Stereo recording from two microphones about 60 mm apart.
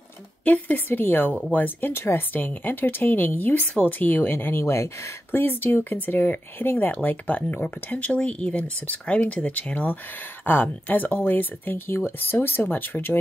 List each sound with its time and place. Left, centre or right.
0.5 s speech: left
5.4 s speech: left